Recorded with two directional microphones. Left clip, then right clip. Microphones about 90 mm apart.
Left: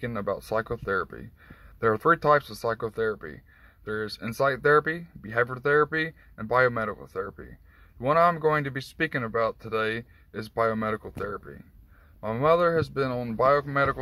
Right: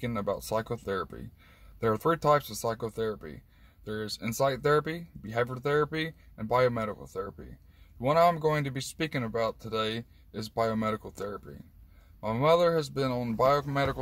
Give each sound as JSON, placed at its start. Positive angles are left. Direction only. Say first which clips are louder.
{"t": 0.0, "sound": "speech", "louder": "left 2 dB", "side_deg": -20}
{"t": 8.0, "sound": "speech", "louder": "left 2 dB", "side_deg": -20}